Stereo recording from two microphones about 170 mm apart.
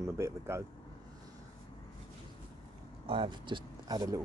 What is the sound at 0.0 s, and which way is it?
Speech, 15° right (ahead or behind).